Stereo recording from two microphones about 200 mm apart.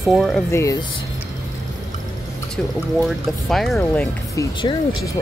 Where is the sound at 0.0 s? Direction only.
Centre (ahead or behind).